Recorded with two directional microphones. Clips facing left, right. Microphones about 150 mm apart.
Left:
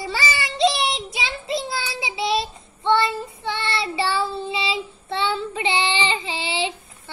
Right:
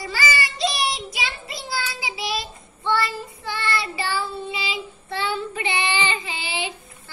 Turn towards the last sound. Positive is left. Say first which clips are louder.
# left 4 dB
turn(degrees=25)  # may be behind; listen again after turning